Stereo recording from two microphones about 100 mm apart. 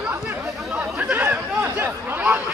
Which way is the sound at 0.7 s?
15° right (ahead or behind).